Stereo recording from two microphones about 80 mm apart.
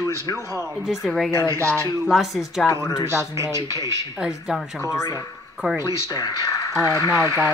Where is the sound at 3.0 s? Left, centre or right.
Right.